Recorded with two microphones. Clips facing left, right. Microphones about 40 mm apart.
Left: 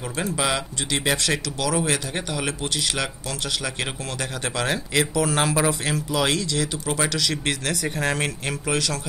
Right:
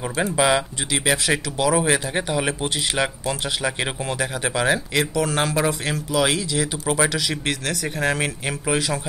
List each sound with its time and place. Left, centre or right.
0.1 s speech: centre
7.4 s speech: centre
8.7 s speech: centre